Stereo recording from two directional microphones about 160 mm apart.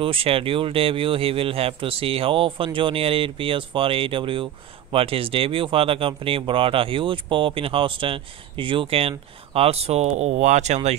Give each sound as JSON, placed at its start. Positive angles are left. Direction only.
{"t": 0.0, "sound": "speech", "side_deg": -35}